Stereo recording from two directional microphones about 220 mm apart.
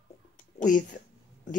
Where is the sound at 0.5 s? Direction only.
35° left (ahead or behind).